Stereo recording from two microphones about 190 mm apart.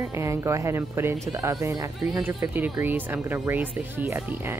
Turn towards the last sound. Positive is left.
turn(degrees=-10)  # may be behind; listen again after turning